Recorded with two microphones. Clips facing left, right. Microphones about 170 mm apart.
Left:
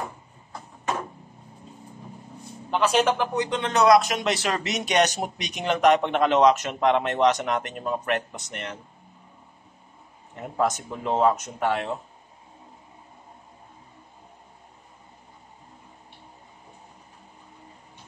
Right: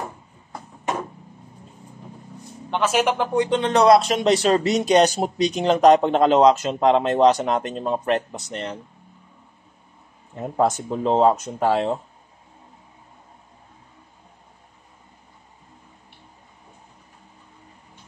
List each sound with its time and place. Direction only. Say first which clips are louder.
2.7 s a man's voice: right 1 dB; 5° right (ahead or behind)
3.2 s speech: right 5 dB; 30° right (ahead or behind)
10.4 s speech: right 4 dB; 30° right (ahead or behind)